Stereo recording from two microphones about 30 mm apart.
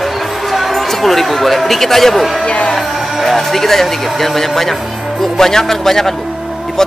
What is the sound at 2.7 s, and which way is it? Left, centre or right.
Music, centre.